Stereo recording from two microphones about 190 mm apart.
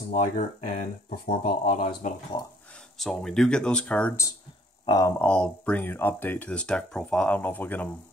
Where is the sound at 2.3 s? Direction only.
20° left (ahead or behind).